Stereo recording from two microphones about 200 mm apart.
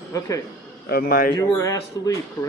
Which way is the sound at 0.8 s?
50° left (ahead or behind).